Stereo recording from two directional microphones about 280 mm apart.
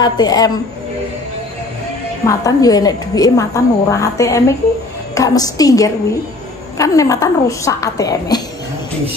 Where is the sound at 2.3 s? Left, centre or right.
Centre.